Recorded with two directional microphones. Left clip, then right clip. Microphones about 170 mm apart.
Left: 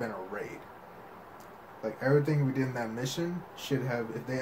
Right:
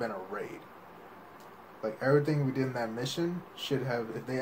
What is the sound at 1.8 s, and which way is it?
Speech, 15° right (ahead or behind).